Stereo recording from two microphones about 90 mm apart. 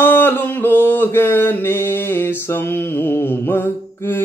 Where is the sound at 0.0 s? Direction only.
25° left (ahead or behind).